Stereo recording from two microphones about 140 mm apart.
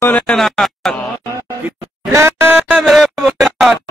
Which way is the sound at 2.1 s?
15° right (ahead or behind).